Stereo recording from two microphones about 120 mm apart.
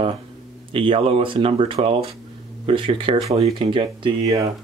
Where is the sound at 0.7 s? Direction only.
50° right (ahead or behind).